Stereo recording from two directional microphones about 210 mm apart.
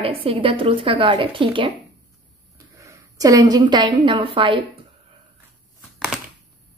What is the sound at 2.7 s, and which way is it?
A woman's voice, 15° right (ahead or behind).